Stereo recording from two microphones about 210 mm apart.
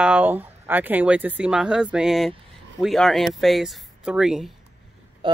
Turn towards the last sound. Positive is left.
turn(degrees=-25)  # may be behind; listen again after turning